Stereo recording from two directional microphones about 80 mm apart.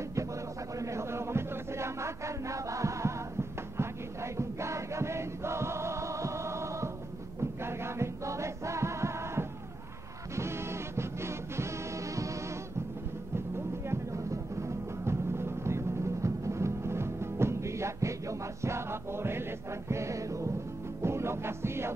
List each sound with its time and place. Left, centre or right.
0.7 s a sound: right
3.7 s choir: right
7.6 s music: right
13.8 s music: right